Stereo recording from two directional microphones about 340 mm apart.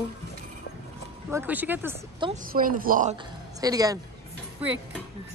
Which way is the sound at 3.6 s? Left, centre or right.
Centre.